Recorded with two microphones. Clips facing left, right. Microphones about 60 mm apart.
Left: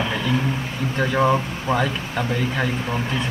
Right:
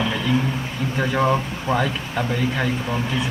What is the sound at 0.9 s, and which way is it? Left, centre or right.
Speech, centre.